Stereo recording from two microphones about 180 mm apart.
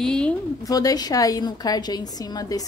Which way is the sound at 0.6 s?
20° left (ahead or behind).